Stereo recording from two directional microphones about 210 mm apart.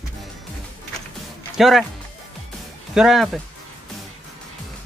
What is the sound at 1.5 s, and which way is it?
Speech, centre (ahead or behind).